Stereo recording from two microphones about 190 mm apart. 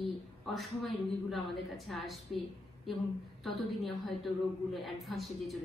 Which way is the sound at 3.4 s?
Centre (ahead or behind).